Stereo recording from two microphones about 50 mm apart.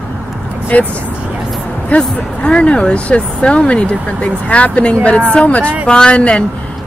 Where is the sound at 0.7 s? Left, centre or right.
Left.